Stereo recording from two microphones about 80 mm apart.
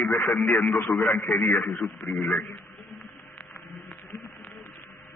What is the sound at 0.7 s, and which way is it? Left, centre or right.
Speech, left.